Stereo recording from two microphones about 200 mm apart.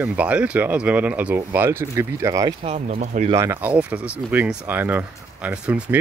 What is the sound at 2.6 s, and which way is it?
Speech, 30° right (ahead or behind).